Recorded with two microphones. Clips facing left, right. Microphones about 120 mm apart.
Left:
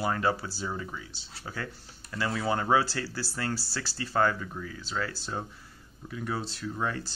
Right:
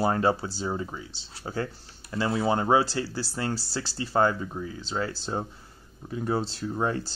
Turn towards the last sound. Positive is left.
turn(degrees=-30)  # may be behind; listen again after turning